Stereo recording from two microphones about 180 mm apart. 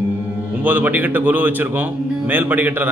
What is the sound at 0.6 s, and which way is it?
A man's voice, 10° right (ahead or behind).